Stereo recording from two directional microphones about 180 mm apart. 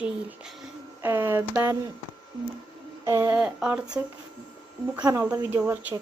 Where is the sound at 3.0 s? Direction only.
15° right (ahead or behind).